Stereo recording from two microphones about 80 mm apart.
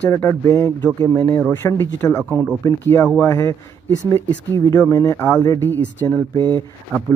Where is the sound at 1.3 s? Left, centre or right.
Centre.